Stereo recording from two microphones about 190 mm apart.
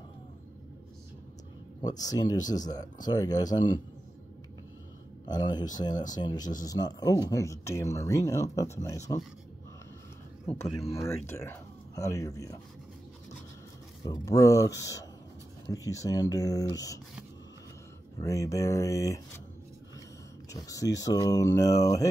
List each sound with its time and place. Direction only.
1.8 s a man's voice: 20° left (ahead or behind)
5.2 s a man's voice: 20° left (ahead or behind)
10.5 s a man's voice: 30° left (ahead or behind)
10.9 s speech: 15° left (ahead or behind)
14.0 s speech: 15° left (ahead or behind)
18.2 s speech: 15° left (ahead or behind)
20.5 s speech: 15° left (ahead or behind)